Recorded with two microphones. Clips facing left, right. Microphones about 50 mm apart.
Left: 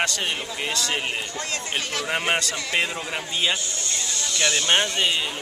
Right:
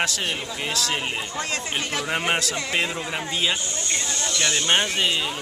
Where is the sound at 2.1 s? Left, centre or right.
Centre.